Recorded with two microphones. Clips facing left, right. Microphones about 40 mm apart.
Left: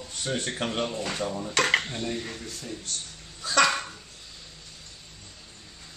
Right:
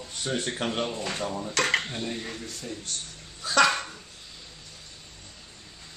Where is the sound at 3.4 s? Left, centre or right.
Centre.